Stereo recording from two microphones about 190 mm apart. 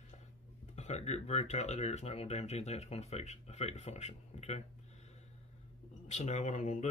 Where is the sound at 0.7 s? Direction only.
35° left (ahead or behind).